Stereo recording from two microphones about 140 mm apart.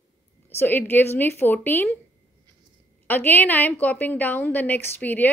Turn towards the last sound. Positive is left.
turn(degrees=10)  # may be behind; listen again after turning